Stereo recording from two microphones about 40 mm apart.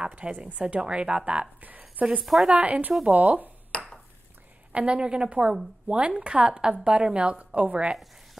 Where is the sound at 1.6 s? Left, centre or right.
Right.